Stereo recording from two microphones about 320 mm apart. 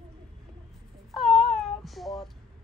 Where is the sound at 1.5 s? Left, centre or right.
Centre.